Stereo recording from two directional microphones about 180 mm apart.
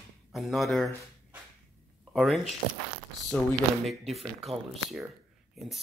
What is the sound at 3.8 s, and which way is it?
Speech, centre (ahead or behind).